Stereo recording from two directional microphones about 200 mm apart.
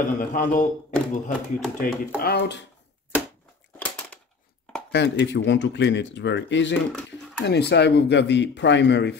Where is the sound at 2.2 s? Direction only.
55° left (ahead or behind).